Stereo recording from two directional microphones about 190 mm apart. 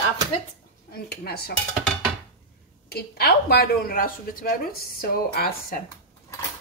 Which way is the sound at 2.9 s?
55° left (ahead or behind).